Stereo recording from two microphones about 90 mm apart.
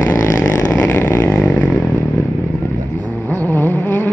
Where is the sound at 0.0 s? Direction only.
30° left (ahead or behind).